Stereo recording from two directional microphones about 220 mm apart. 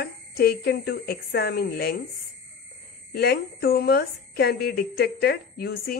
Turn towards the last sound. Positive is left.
turn(degrees=45)  # may be behind; listen again after turning